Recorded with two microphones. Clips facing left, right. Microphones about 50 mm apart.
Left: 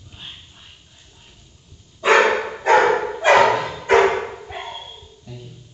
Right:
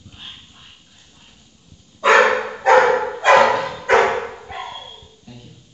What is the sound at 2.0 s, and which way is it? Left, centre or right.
Bow-wow, centre.